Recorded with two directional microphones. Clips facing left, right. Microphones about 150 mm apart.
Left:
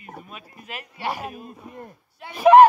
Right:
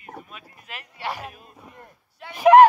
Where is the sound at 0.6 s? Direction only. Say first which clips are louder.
Left 3 dB; 15° left (ahead or behind).